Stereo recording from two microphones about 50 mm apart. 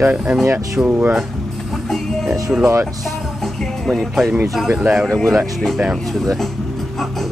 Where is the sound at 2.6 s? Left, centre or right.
Right.